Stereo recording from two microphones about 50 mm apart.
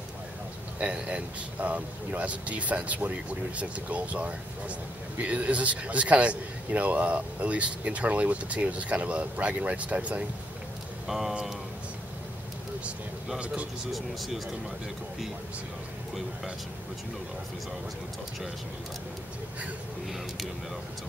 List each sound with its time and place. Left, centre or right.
0.7 s speech: right
11.1 s speech: centre
13.9 s speech: centre